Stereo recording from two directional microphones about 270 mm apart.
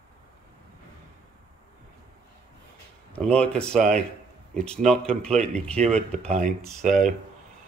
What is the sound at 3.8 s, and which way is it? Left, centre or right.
Speech, right.